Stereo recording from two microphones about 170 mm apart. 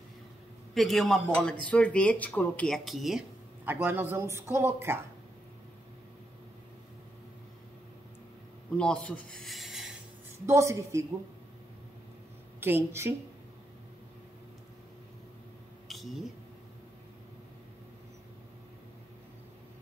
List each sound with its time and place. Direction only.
0.7 s speech: centre (ahead or behind)
3.6 s speech: 10° right (ahead or behind)
8.7 s speech: 5° left (ahead or behind)
10.4 s speech: 15° right (ahead or behind)
12.5 s a woman's voice: 15° right (ahead or behind)
15.9 s a sound: centre (ahead or behind)